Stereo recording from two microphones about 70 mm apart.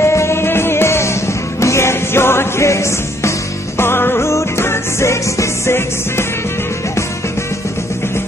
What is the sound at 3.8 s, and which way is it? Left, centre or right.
Music, left.